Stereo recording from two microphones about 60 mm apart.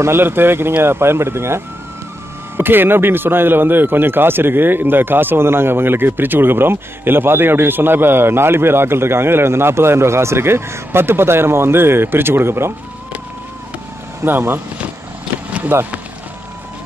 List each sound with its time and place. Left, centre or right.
0.0 s speech: right
2.5 s speech: right
14.2 s speech: right
15.7 s speech: right